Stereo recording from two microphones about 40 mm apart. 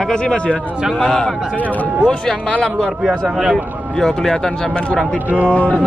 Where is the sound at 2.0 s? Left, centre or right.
Left.